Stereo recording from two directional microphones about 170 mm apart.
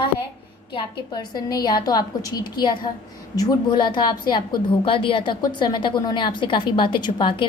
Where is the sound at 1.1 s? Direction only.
25° left (ahead or behind).